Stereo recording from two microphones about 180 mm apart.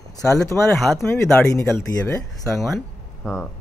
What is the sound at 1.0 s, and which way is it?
Speech, 15° left (ahead or behind).